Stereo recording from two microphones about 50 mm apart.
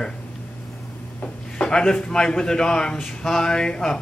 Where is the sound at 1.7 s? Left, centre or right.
Centre.